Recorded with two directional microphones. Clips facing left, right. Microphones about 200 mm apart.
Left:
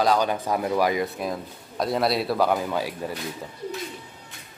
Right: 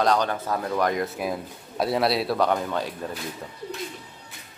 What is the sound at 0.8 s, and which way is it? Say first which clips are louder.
Speech: left 1 dB; centre (ahead or behind).